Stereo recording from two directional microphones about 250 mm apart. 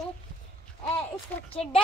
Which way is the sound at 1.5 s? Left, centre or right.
Left.